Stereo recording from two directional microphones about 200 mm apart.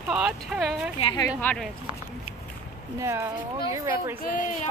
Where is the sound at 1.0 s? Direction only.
20° left (ahead or behind).